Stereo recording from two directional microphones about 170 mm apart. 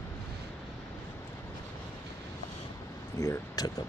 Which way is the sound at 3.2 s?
20° left (ahead or behind).